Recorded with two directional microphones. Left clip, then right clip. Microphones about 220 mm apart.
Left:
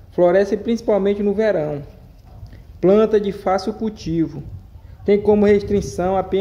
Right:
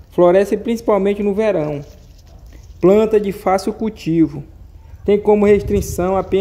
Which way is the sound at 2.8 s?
25° right (ahead or behind).